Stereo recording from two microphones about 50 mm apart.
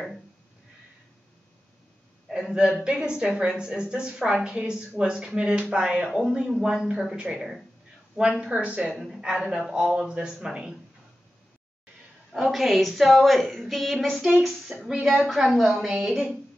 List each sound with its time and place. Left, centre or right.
2.5 s a woman's voice: centre
8.5 s speech: right
8.9 s speech: centre
12.3 s a woman's voice: centre
14.9 s speech: centre
15.1 s a woman's voice: centre